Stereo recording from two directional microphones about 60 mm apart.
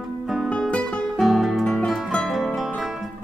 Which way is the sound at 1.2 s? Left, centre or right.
Centre.